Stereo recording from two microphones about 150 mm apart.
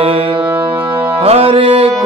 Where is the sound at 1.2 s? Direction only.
40° right (ahead or behind).